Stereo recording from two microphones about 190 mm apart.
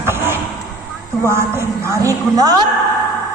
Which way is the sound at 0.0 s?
10° right (ahead or behind).